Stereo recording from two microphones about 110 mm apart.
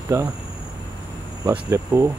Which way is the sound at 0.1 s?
25° right (ahead or behind).